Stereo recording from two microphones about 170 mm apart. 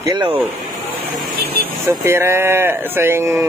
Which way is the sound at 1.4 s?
65° right (ahead or behind).